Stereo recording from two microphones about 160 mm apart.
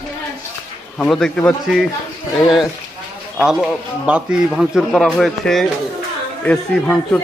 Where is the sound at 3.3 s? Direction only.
Centre (ahead or behind).